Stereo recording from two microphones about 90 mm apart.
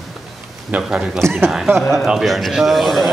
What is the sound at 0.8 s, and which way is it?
A man's voice, 10° right (ahead or behind).